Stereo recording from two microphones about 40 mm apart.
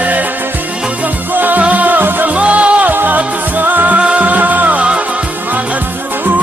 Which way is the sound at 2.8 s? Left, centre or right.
Right.